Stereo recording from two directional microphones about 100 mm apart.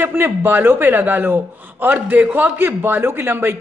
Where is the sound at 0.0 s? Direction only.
20° right (ahead or behind).